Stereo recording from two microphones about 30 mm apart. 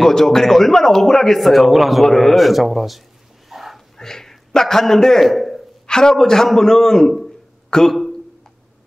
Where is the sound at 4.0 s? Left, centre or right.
Centre.